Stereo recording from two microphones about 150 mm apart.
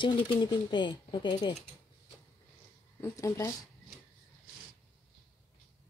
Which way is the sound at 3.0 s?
20° left (ahead or behind).